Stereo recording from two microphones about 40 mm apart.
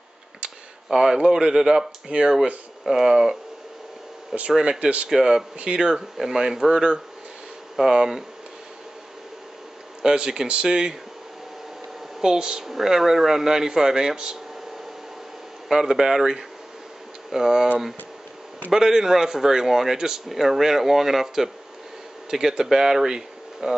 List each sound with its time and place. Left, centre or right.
0.8 s speech: centre
4.5 s speech: right
4.7 s speech: right
5.1 s speech: centre
10.0 s speech: centre
12.2 s speech: centre
15.7 s speech: centre
18.7 s speech: centre